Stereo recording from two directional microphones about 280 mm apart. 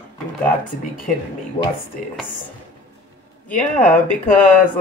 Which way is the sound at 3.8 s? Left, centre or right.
Left.